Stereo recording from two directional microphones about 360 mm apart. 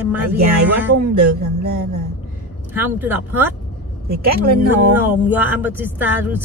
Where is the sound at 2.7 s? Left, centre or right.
Centre.